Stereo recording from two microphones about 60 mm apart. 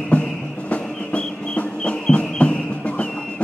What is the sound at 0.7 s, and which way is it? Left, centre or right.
Music, left.